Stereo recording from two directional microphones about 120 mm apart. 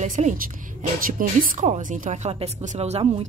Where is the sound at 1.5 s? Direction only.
80° right; by 3.0 s 65° right (ahead or behind).